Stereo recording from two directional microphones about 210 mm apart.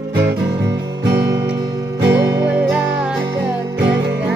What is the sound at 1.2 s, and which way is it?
Music, 15° right (ahead or behind).